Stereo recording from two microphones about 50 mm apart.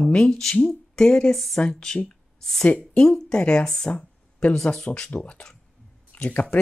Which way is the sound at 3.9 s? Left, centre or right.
Left.